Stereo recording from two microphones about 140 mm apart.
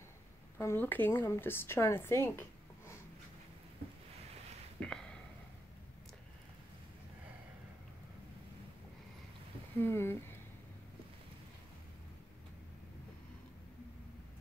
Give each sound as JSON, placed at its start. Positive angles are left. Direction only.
{"t": 0.6, "sound": "a woman's voice", "side_deg": 15}
{"t": 4.8, "sound": "a sound", "side_deg": 5}
{"t": 9.8, "sound": "speech", "side_deg": 15}